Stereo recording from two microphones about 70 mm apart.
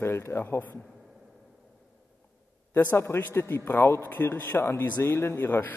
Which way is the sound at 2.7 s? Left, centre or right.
Left.